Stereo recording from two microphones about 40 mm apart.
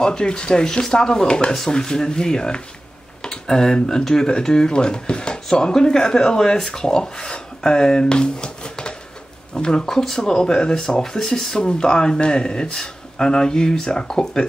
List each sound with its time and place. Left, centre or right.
0.0 s speech: centre